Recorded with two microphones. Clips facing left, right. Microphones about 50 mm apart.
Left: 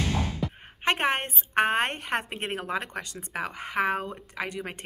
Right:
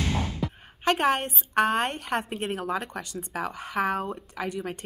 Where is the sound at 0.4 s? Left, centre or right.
Centre.